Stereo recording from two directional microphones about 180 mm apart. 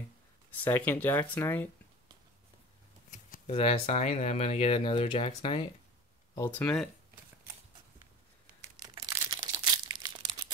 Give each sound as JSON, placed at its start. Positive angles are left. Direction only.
{"t": 0.7, "sound": "speech", "side_deg": 10}
{"t": 3.4, "sound": "speech", "side_deg": 35}
{"t": 6.3, "sound": "speech", "side_deg": 10}
{"t": 8.8, "sound": "crumpling", "side_deg": -20}